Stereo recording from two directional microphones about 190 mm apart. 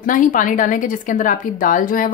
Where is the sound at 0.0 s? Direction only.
45° left (ahead or behind).